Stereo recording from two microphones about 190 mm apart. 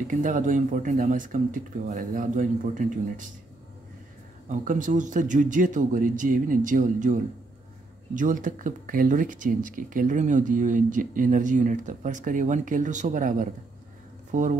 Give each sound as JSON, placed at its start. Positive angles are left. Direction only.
{"t": 0.1, "sound": "speech", "side_deg": -40}
{"t": 4.5, "sound": "speech", "side_deg": -40}